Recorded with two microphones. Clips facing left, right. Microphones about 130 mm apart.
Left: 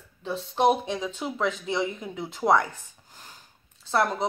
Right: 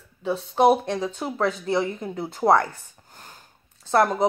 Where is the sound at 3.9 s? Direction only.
50° right (ahead or behind).